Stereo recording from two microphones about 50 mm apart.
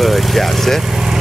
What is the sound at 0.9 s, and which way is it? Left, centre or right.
Vehicle, centre.